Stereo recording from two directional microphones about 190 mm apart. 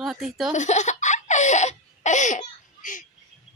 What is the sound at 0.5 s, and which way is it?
Baby laughter, 40° left (ahead or behind).